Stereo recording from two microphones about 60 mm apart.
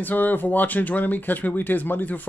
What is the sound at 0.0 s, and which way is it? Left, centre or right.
Speech, left.